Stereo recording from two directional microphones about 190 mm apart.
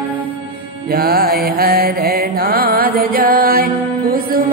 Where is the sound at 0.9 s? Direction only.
50° right (ahead or behind).